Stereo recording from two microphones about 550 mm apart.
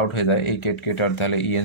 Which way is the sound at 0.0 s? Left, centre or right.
Left.